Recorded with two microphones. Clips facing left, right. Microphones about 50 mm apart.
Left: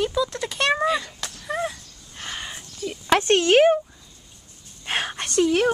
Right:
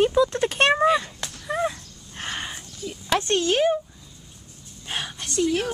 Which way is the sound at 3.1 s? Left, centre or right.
Left.